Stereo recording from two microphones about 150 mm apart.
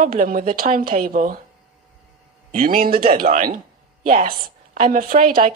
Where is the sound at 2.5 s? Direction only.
70° right (ahead or behind).